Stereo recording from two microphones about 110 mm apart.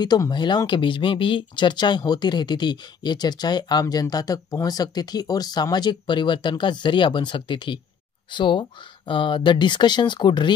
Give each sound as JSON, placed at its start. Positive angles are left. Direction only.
{"t": 0.0, "sound": "speech", "side_deg": 40}